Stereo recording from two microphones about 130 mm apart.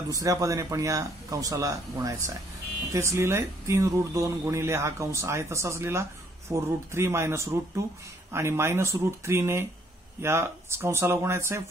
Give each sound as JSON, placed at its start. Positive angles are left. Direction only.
{"t": 0.1, "sound": "speech", "side_deg": -25}